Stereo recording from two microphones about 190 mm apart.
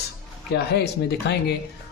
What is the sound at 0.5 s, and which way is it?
Speech, 60° left (ahead or behind).